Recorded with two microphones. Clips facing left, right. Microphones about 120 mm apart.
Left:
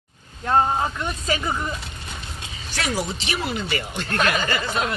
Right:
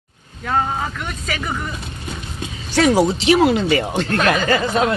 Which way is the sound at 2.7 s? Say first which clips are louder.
Right 12 dB; 90° right.